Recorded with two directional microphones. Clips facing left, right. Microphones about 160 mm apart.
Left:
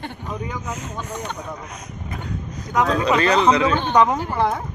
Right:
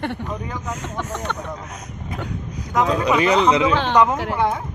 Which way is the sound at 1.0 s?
85° right.